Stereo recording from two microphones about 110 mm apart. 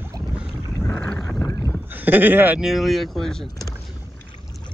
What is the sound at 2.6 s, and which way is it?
Speech, centre (ahead or behind).